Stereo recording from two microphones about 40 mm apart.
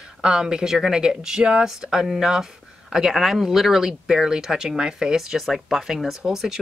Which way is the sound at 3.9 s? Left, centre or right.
Centre.